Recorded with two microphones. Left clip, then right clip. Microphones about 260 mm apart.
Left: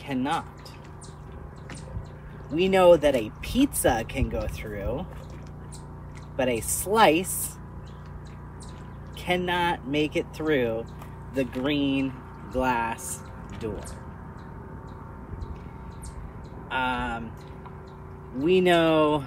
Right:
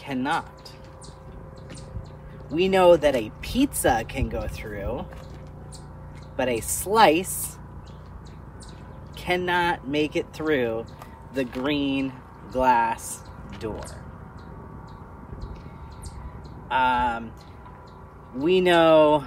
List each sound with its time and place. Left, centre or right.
0.0 s speech: centre
2.5 s speech: centre
6.3 s speech: centre
9.2 s speech: centre
16.6 s speech: centre
18.4 s speech: centre